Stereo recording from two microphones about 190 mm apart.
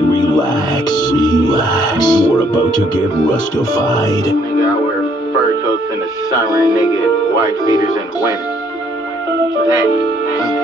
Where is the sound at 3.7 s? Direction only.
20° left (ahead or behind).